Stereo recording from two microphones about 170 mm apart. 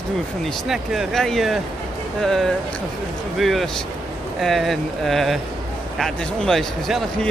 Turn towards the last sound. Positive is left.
turn(degrees=0)  # may be behind; listen again after turning